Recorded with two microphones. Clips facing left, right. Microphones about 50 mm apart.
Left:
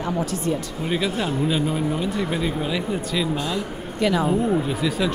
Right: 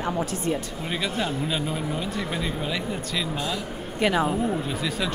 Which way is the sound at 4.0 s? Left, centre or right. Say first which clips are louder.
Left 1 dB; right.